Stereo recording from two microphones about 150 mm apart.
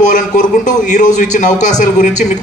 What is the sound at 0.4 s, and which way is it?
A man's voice, 55° left (ahead or behind).